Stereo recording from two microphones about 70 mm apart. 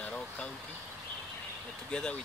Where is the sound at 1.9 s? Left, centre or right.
Centre.